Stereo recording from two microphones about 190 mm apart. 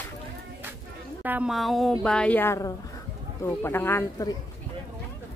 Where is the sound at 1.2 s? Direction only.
5° right (ahead or behind); by 4.3 s 10° left (ahead or behind).